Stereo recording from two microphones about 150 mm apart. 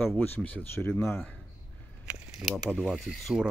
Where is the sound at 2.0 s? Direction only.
5° right (ahead or behind).